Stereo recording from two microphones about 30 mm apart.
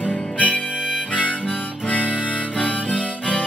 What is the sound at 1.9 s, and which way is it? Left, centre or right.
Harmonica, left.